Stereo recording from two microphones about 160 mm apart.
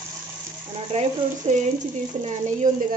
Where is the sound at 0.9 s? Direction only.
50° right (ahead or behind).